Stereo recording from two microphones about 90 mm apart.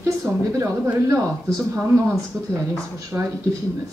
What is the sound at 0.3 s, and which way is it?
Speech, 15° right (ahead or behind).